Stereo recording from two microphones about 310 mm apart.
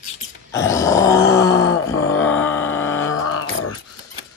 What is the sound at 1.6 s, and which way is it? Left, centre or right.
Groan, left.